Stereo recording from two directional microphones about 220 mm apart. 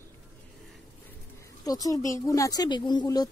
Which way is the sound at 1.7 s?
15° left (ahead or behind).